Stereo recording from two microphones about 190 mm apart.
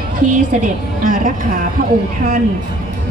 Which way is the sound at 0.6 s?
45° right (ahead or behind).